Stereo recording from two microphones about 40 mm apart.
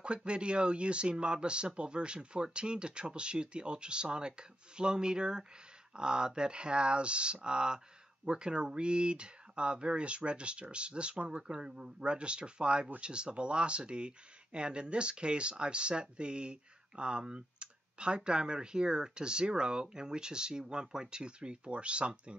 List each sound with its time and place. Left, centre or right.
0.0 s speech: right